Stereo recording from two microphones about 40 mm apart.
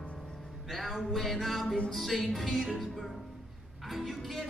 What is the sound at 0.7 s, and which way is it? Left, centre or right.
Music, centre.